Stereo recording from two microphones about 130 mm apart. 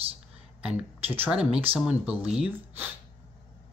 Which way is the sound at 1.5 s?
45° right (ahead or behind).